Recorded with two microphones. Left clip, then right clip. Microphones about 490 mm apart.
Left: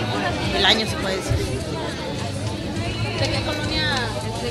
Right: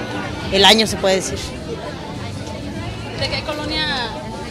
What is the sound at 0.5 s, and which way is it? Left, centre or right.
Speech, right.